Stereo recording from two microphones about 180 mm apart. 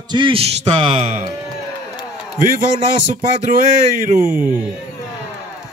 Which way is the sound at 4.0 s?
50° right (ahead or behind).